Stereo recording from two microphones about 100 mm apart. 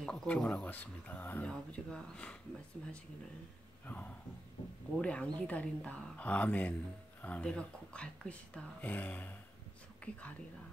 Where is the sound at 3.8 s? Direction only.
15° left (ahead or behind).